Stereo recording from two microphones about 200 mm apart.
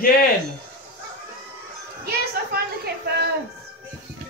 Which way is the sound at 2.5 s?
50° right (ahead or behind).